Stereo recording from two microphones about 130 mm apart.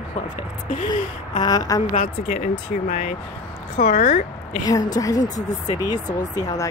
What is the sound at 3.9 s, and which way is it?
Speech, 90° left.